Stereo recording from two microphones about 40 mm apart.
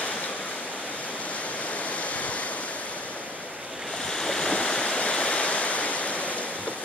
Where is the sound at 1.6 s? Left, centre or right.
Left.